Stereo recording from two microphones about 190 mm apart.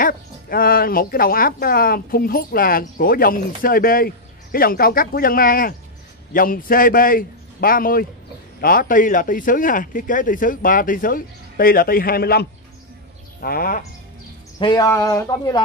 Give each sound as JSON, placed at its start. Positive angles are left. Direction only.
{"t": 0.0, "sound": "speech", "side_deg": 50}
{"t": 14.6, "sound": "speech", "side_deg": 20}